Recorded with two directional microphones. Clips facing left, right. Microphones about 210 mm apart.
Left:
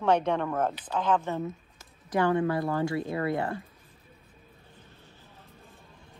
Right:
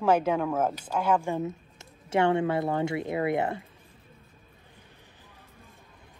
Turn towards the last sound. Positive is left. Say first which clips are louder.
# left 1 dB
turn(degrees=-15)  # may be behind; listen again after turning